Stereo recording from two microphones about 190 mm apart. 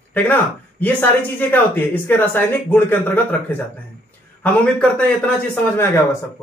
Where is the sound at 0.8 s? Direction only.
10° left (ahead or behind).